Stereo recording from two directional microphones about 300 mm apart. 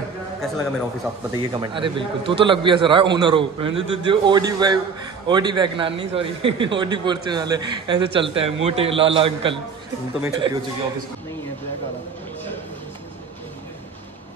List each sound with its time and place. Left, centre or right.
0.4 s a man's voice: centre
1.3 s a man's voice: centre